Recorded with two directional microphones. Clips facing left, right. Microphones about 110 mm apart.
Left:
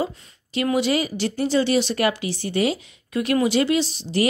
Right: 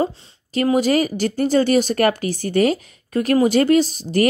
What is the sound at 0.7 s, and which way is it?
Speech, 45° right (ahead or behind).